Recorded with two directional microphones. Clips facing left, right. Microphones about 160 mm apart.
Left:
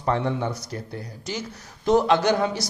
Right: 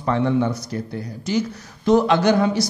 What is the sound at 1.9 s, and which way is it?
Speech, 30° left (ahead or behind).